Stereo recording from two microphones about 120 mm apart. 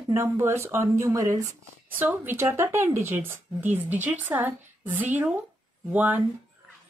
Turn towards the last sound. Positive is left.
turn(degrees=-15)  # may be behind; listen again after turning